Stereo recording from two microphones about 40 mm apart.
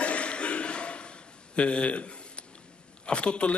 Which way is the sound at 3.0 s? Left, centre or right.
Left.